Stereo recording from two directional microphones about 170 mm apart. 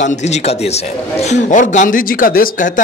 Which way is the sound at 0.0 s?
45° left (ahead or behind).